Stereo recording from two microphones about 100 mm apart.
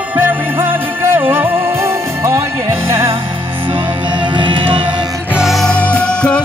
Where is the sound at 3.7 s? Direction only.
55° right (ahead or behind).